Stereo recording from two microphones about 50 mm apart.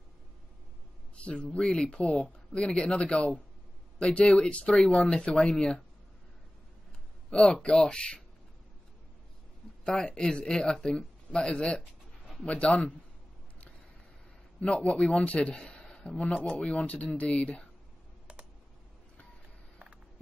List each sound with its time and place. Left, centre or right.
1.2 s a man's voice: left
7.2 s speech: centre
9.8 s a man's voice: centre
14.6 s a man's voice: left